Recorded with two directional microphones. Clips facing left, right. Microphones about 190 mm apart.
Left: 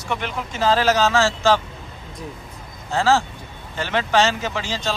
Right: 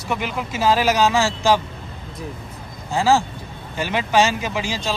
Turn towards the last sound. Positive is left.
turn(degrees=-10)  # may be behind; listen again after turning